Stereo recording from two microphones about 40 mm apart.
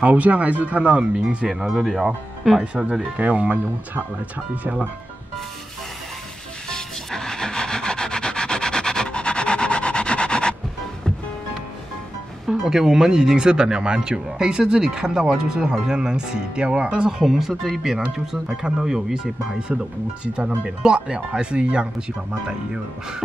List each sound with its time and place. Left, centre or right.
0.0 s speech: right
1.5 s speech: centre
3.2 s speech: right
6.7 s rub: centre
12.4 s speech: centre
17.2 s speech: centre
19.7 s speech: right